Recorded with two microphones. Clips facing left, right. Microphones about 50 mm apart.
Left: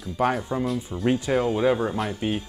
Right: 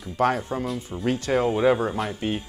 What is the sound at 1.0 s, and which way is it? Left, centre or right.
Speech, left.